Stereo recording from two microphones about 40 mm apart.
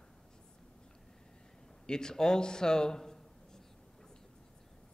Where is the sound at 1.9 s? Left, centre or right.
Centre.